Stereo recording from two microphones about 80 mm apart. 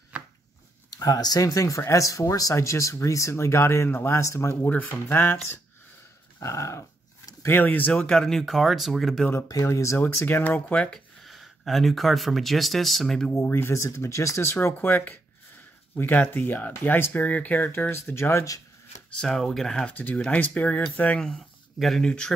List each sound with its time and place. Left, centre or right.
0.8 s speech: left
6.4 s dog: left
7.5 s speech: left; by 9.2 s centre
9.5 s speech: left
10.7 s speech: centre
11.2 s speech: centre
13.3 s speech: left
19.0 s speech: centre
21.3 s speech: centre